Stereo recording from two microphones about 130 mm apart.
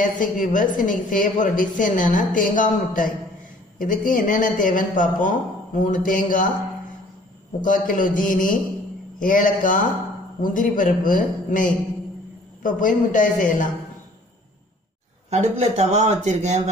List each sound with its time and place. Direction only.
0.0 s a woman's voice: 85° left
7.6 s a woman's voice: 90° left
15.2 s speech: 60° right (ahead or behind)